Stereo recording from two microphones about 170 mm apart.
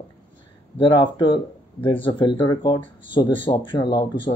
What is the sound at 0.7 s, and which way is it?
Speech, 30° left (ahead or behind).